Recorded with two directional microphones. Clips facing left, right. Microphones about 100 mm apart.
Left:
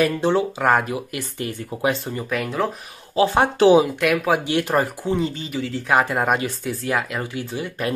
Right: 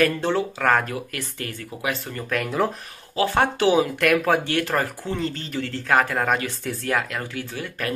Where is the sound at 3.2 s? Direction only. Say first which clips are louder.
Left 4 dB; 25° left (ahead or behind).